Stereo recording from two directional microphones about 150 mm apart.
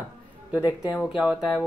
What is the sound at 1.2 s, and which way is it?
Speech, 5° right (ahead or behind).